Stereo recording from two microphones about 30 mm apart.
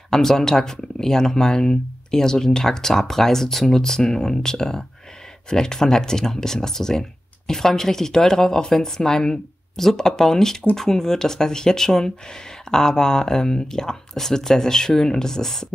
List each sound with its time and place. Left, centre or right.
0.1 s speech: centre